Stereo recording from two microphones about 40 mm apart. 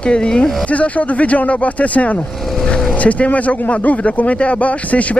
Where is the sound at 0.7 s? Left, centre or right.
Left.